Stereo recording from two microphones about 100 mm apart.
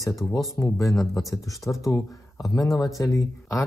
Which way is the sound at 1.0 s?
Centre (ahead or behind).